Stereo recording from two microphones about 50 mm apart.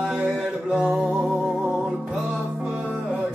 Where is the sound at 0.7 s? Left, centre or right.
Centre.